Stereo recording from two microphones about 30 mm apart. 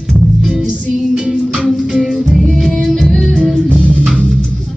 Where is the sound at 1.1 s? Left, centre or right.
Right.